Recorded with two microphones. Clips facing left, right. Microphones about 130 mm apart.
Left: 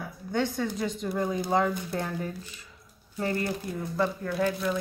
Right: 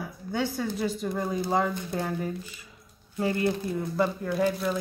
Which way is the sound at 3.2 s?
10° right (ahead or behind).